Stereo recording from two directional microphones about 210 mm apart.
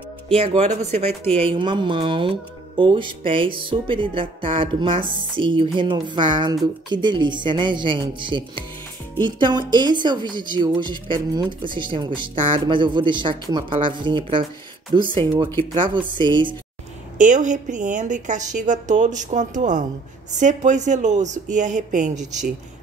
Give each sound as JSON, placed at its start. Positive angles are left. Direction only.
{"t": 0.3, "sound": "speech", "side_deg": -30}
{"t": 17.2, "sound": "a woman's voice", "side_deg": -35}